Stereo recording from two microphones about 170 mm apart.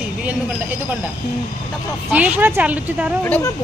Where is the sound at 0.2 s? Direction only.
5° right (ahead or behind).